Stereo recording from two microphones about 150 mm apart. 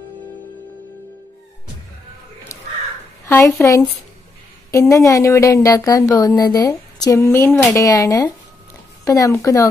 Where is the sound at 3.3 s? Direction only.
15° left (ahead or behind).